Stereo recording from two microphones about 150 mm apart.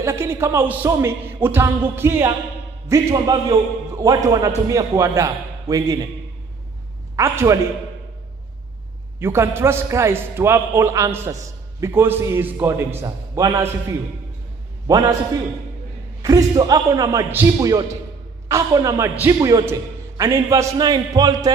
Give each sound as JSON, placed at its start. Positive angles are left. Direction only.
{"t": 0.0, "sound": "a man's voice", "side_deg": -15}
{"t": 7.2, "sound": "a man's voice", "side_deg": -20}
{"t": 9.2, "sound": "a man's voice", "side_deg": -15}
{"t": 14.9, "sound": "a man's voice", "side_deg": -25}
{"t": 16.2, "sound": "a man's voice", "side_deg": -25}